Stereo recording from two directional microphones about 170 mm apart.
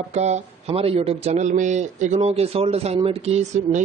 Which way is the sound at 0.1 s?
40° right (ahead or behind).